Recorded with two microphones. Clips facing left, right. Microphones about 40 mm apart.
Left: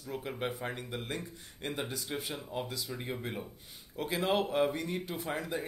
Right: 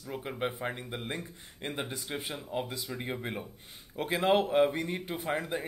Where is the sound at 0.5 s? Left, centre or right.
Centre.